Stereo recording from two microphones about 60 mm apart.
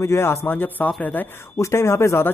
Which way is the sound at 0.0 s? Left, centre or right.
Left.